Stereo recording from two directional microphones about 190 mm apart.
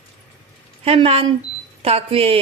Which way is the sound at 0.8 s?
30° right (ahead or behind).